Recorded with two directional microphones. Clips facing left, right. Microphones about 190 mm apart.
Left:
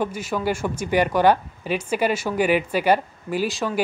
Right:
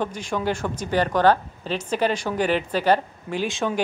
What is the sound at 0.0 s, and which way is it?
Speech, 5° left (ahead or behind).